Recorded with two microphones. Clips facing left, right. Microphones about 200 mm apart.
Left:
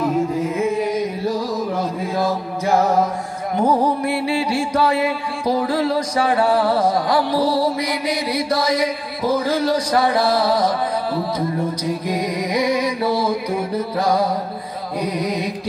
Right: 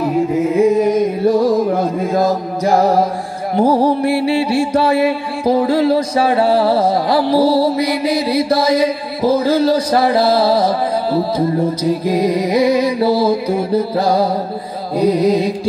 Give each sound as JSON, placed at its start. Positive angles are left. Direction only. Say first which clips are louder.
{"t": 0.3, "sound": "music", "louder": "right 7 dB", "side_deg": -30}
{"t": 0.7, "sound": "mantra", "louder": "right 7 dB", "side_deg": -50}
{"t": 15.0, "sound": "music", "louder": "right 10 dB", "side_deg": -30}